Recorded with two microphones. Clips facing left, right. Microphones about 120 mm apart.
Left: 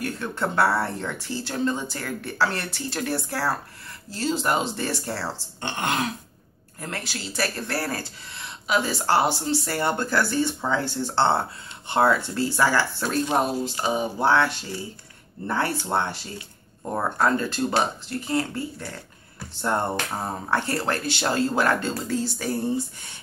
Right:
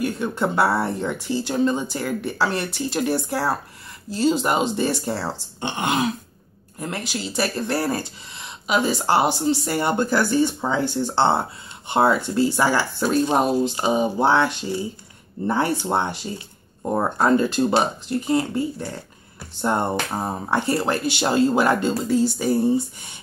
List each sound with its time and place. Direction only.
0.0 s speech: 15° right (ahead or behind)